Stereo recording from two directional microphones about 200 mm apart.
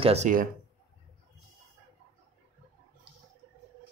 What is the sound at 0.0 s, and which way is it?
Speech, 35° right (ahead or behind).